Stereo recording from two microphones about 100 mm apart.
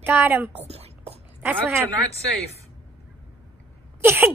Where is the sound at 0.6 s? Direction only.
90° right.